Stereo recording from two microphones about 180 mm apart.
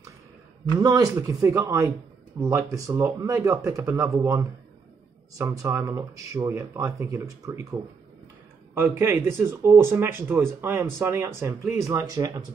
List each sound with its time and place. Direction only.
0.7 s speech: 20° right (ahead or behind)
8.7 s speech: 15° right (ahead or behind)